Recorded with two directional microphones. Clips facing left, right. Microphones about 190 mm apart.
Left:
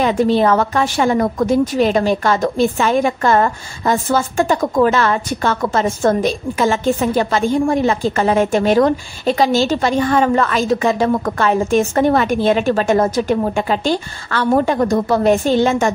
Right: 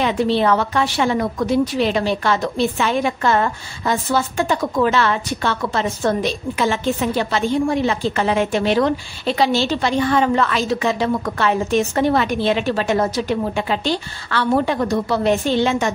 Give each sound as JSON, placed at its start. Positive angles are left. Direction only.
{"t": 0.0, "sound": "a woman's voice", "side_deg": 45}